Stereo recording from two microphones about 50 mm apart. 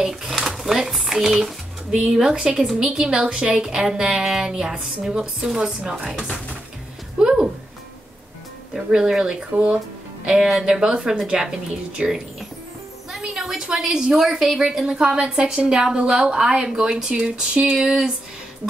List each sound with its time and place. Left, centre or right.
0.0 s a sound: centre
0.7 s a woman's voice: centre
7.2 s a sound: centre
8.7 s a woman's voice: centre
9.5 s speech: right
10.2 s a woman's voice: centre
13.3 s a woman's voice: centre
17.8 s a woman's voice: centre